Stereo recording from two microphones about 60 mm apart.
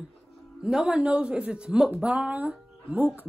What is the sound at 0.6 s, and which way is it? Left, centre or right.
A woman's voice, centre.